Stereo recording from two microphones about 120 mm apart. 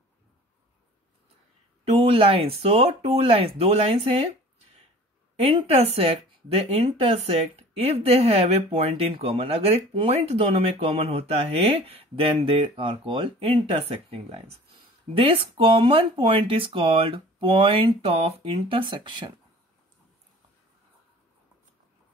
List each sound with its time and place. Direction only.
2.0 s speech: 50° right (ahead or behind)
5.3 s speech: 55° right (ahead or behind)